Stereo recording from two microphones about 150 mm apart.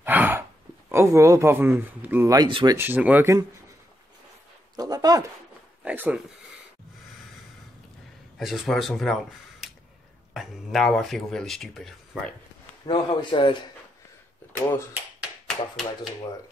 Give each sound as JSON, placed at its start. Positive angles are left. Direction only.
{"t": 0.0, "sound": "gasp", "side_deg": -10}
{"t": 2.3, "sound": "speech", "side_deg": -30}
{"t": 2.8, "sound": "speech", "side_deg": -10}
{"t": 4.7, "sound": "speech", "side_deg": -25}
{"t": 5.9, "sound": "speech", "side_deg": -10}
{"t": 8.4, "sound": "speech", "side_deg": 0}
{"t": 12.8, "sound": "a man's voice", "side_deg": 30}
{"t": 15.4, "sound": "speech", "side_deg": 0}